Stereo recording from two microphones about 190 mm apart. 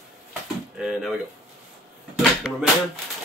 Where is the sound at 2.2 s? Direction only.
Centre (ahead or behind).